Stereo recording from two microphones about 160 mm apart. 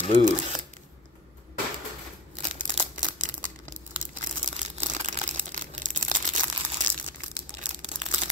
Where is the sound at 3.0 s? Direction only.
55° right (ahead or behind).